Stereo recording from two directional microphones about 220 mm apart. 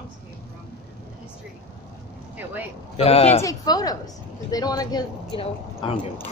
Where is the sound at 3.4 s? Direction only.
15° left (ahead or behind).